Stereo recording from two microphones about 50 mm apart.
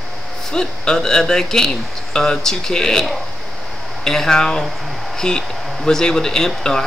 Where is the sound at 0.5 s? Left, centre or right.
Centre.